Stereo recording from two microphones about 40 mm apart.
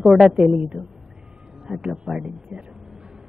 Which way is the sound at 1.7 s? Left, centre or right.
Centre.